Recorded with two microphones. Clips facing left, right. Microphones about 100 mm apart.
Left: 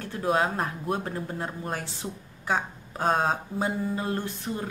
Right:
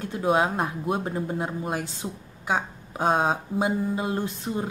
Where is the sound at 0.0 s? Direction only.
15° right (ahead or behind).